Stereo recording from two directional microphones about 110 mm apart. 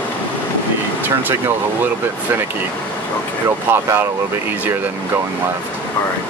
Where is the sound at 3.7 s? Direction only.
20° right (ahead or behind).